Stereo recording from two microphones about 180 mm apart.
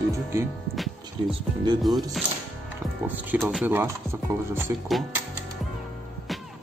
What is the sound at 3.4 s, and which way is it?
Speech, 5° right (ahead or behind).